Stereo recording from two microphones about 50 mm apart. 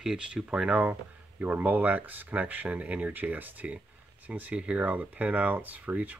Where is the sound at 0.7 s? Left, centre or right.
Right.